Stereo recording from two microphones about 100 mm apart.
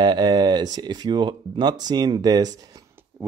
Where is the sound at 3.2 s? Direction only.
15° right (ahead or behind).